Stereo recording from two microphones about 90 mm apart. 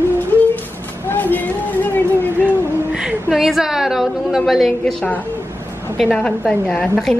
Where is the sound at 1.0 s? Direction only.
20° left (ahead or behind).